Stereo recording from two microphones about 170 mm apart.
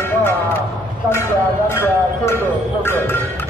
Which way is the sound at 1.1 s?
15° left (ahead or behind).